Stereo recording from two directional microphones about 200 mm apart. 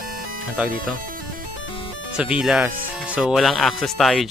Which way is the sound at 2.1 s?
5° right (ahead or behind).